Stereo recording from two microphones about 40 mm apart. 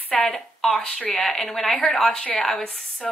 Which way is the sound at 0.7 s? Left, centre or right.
Left.